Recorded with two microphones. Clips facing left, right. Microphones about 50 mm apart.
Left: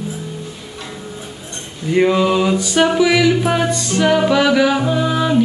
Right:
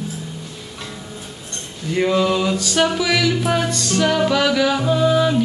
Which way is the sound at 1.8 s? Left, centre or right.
Centre.